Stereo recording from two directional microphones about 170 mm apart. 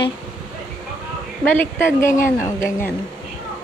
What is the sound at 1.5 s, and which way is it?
Speech, 10° left (ahead or behind).